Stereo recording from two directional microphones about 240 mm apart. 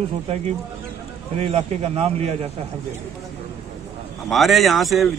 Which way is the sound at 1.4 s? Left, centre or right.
Right.